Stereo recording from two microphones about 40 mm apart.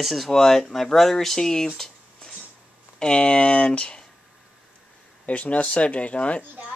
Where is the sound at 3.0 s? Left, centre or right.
Left.